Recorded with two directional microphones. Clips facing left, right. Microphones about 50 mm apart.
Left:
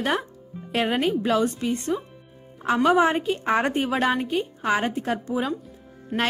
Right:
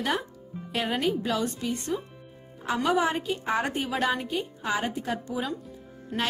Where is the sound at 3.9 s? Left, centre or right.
Left.